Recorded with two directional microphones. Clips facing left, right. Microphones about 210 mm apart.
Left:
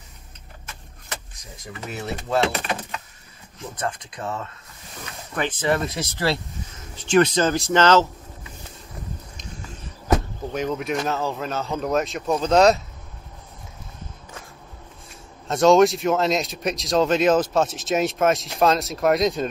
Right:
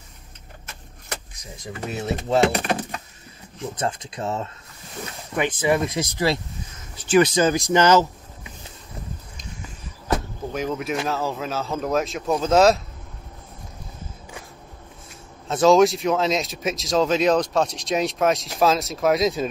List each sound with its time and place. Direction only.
1.9 s speech: 25° right (ahead or behind)
2.5 s speech: 45° right (ahead or behind)
3.8 s speech: 25° right (ahead or behind)
5.3 s speech: 10° right (ahead or behind)
10.5 s speech: centre (ahead or behind)
15.4 s speech: centre (ahead or behind)